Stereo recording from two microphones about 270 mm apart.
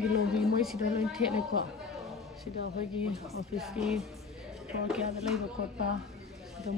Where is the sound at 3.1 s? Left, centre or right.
Centre.